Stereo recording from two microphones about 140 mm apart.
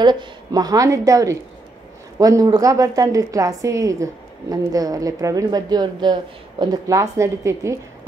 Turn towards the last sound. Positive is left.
turn(degrees=-20)  # may be behind; listen again after turning